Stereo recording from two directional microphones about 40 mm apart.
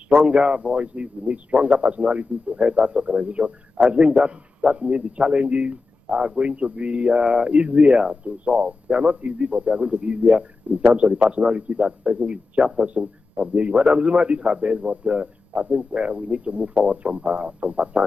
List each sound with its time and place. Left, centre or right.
0.2 s a man's voice: right